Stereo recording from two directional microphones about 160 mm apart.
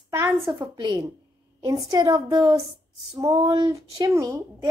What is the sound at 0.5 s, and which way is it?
A woman's voice, 30° right (ahead or behind).